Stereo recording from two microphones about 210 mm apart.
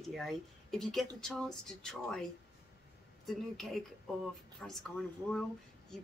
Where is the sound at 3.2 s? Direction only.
Centre (ahead or behind).